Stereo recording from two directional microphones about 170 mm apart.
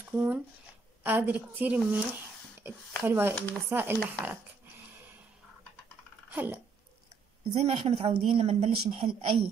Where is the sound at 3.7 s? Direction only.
15° right (ahead or behind).